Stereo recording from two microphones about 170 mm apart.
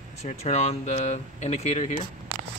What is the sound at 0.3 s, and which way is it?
Speech, 40° left (ahead or behind).